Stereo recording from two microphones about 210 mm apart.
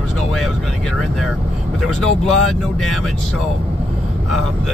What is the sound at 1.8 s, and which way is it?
Speech, centre (ahead or behind).